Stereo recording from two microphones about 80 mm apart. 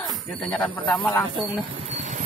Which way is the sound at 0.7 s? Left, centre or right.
Left.